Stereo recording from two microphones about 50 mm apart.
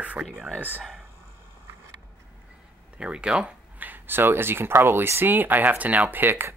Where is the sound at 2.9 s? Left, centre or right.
Right.